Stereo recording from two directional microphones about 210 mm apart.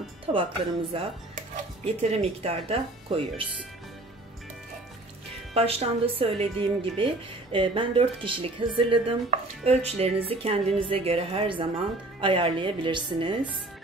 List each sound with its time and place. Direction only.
0.3 s speech: 30° right (ahead or behind)
2.0 s speech: 30° right (ahead or behind)
5.5 s speech: 30° right (ahead or behind)